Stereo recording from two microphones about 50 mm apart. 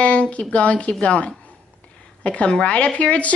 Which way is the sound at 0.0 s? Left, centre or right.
Left.